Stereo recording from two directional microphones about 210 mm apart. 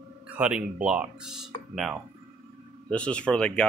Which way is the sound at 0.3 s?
5° right (ahead or behind).